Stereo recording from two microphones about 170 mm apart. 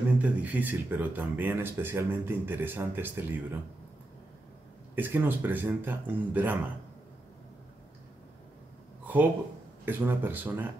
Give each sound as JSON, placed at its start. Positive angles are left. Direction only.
{"t": 0.2, "sound": "speech", "side_deg": -10}
{"t": 4.9, "sound": "speech", "side_deg": -10}
{"t": 9.0, "sound": "a sound", "side_deg": -10}
{"t": 9.8, "sound": "speech", "side_deg": -10}